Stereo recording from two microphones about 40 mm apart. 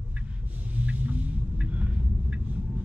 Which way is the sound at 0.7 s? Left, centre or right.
Right.